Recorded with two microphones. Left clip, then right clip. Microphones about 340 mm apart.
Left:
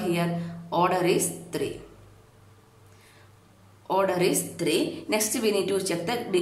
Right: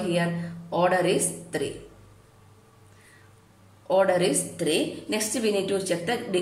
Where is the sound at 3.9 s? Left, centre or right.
Centre.